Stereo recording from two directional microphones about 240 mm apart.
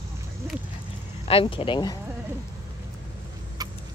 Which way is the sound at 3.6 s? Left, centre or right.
Centre.